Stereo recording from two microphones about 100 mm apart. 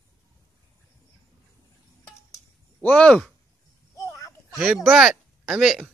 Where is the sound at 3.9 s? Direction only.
30° left (ahead or behind).